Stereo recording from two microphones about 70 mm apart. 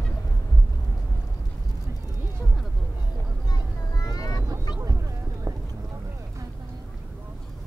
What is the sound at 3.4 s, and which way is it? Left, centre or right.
Vehicle, left.